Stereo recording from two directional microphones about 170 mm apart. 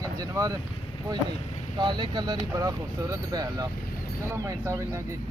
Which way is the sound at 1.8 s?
25° right (ahead or behind).